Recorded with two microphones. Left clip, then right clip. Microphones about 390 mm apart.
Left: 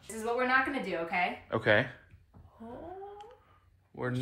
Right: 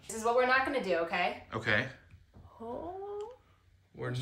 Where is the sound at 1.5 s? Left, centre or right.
Centre.